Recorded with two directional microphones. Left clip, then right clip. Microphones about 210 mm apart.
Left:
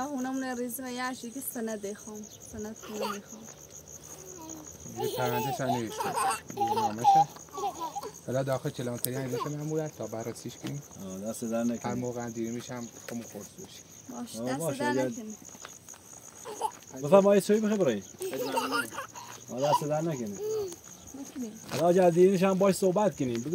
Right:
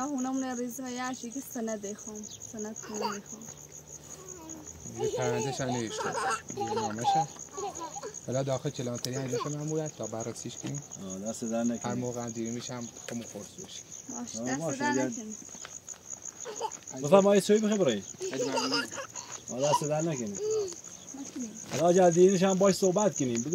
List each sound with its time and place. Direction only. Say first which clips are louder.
0.0 s speech: right 1 dB; 15° left (ahead or behind)
2.9 s speech: even; 50° left (ahead or behind)
5.2 s speech: left 1 dB; 15° right (ahead or behind)
5.9 s a child's voice: left 2 dB; 55° left (ahead or behind)
8.3 s speech: left 1 dB; 10° right (ahead or behind)
10.6 s speech: right 1 dB; 10° left (ahead or behind)
11.8 s speech: even; 15° right (ahead or behind)
14.2 s speech: left 1 dB; 55° left (ahead or behind)
16.4 s a sound: left 2 dB; 55° left (ahead or behind)
17.0 s a man's voice: left 1 dB; centre (ahead or behind)
18.2 s speech: even; 50° left (ahead or behind)
19.5 s speech: left 1 dB; 10° right (ahead or behind)
20.4 s speech: right 2 dB; 50° left (ahead or behind)
21.6 s speech: even; centre (ahead or behind)